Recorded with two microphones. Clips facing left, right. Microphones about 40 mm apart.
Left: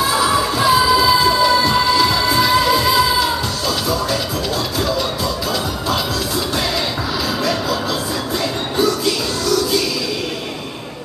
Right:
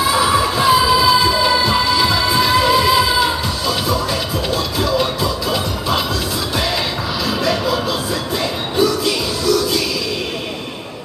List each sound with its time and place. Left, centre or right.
0.1 s music: centre
5.5 s music: centre
7.4 s music: centre